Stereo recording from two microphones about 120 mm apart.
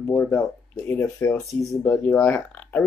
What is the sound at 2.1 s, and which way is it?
Speech, 10° left (ahead or behind).